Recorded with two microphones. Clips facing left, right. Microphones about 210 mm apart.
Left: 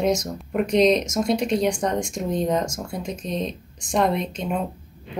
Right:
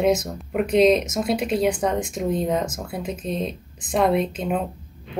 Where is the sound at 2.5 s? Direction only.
55° right (ahead or behind).